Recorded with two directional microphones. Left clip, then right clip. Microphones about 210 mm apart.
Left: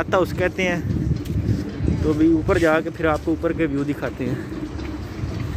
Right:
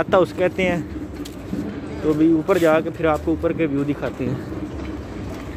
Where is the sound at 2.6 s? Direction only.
Centre (ahead or behind).